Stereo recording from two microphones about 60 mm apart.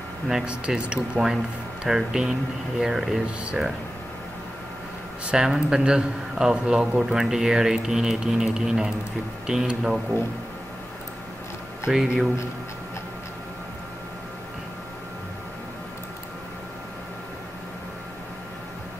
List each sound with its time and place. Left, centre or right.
0.5 s a man's voice: centre
5.2 s a man's voice: centre
11.9 s speech: centre